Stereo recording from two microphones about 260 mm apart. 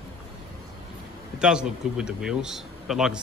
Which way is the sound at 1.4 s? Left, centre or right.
Centre.